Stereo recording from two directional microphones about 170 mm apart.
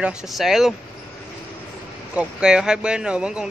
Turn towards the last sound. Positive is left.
turn(degrees=-5)  # may be behind; listen again after turning